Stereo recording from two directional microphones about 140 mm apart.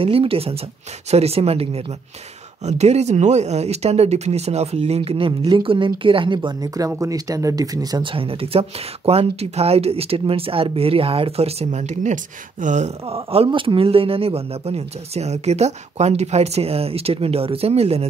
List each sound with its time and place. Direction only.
0.0 s speech: 40° right (ahead or behind)